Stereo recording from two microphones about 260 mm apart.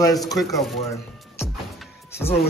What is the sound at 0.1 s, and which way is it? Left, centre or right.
Speech, centre.